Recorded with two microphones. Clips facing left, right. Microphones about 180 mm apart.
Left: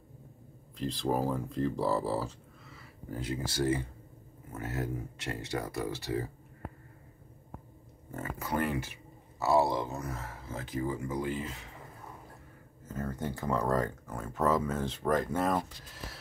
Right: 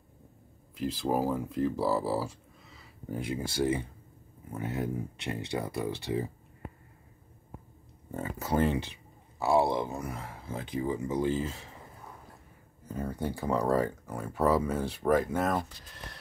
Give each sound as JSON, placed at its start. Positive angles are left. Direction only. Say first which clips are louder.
{"t": 0.7, "sound": "speech", "louder": "right 2 dB", "side_deg": -5}
{"t": 2.7, "sound": "speech", "louder": "right 3 dB", "side_deg": -20}
{"t": 8.2, "sound": "speech", "louder": "right 4 dB", "side_deg": -25}
{"t": 12.8, "sound": "speech", "louder": "right 2 dB", "side_deg": -15}